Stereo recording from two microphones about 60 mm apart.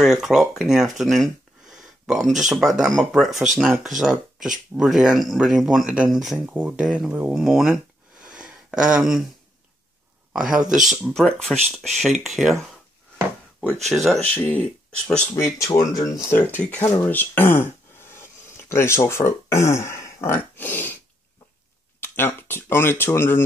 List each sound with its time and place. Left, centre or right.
0.0 s speech: centre
1.7 s a sound: centre
2.3 s speech: centre
7.1 s speech: right
7.3 s speech: centre
8.2 s a sound: centre
10.3 s speech: centre
11.3 s speech: centre
13.8 s speech: centre
14.4 s speech: left
15.3 s speech: left
16.3 s speech: left
20.5 s a sound: left
22.0 s speech: left